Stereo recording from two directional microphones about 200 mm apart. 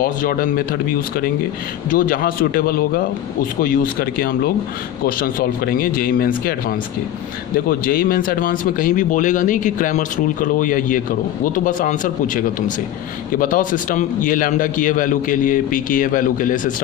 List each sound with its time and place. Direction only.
0.0 s speech: 45° left (ahead or behind)
1.9 s speech: 45° left (ahead or behind)
7.5 s speech: 45° left (ahead or behind)